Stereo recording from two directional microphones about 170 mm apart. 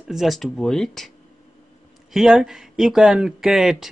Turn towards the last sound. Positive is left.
turn(degrees=-5)  # may be behind; listen again after turning